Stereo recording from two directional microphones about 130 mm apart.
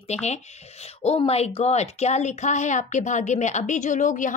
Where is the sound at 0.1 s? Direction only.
60° left (ahead or behind).